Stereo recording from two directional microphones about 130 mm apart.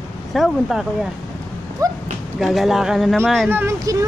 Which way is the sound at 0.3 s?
Centre (ahead or behind).